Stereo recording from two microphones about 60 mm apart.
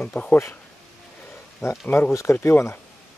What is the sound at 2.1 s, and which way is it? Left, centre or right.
Speech, left.